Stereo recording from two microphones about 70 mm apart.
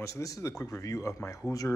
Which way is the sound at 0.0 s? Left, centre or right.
Left.